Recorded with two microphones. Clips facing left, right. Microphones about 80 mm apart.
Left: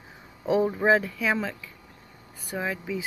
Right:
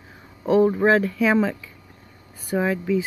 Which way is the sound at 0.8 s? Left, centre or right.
Centre.